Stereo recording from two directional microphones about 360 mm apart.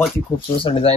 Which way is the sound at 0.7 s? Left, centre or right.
Centre.